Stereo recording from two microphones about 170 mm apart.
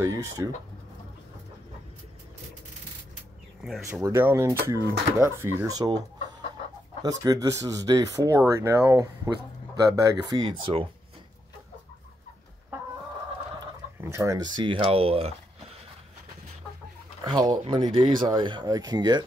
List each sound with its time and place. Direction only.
0.0 s speech: 20° right (ahead or behind)
3.6 s speech: centre (ahead or behind)
4.0 s speech: 15° right (ahead or behind); by 10.9 s 30° right (ahead or behind)
14.0 s speech: 15° right (ahead or behind); by 15.3 s 35° right (ahead or behind)
17.2 s speech: 25° right (ahead or behind)